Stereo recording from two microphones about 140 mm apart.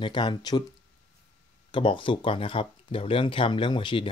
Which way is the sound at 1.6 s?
35° left (ahead or behind).